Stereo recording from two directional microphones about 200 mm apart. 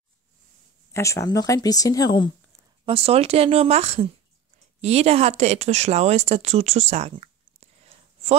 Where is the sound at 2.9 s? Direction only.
30° right (ahead or behind).